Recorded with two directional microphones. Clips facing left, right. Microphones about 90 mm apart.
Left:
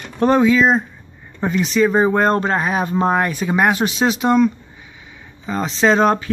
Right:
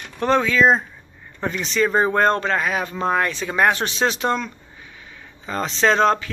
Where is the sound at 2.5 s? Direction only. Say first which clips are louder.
Left 3 dB; 25° left (ahead or behind).